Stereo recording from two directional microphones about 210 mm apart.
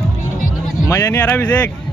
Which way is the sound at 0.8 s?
15° left (ahead or behind).